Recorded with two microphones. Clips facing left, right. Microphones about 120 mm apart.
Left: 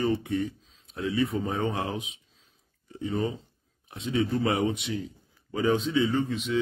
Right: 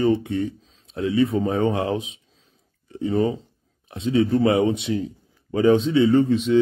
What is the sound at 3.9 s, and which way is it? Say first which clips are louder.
Speech: right 7 dB; 25° right (ahead or behind).